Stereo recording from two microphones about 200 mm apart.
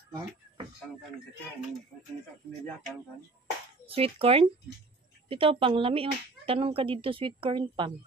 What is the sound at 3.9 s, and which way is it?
Speech, 30° right (ahead or behind).